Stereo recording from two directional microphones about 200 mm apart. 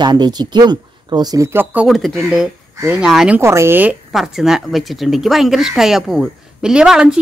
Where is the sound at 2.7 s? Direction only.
15° right (ahead or behind).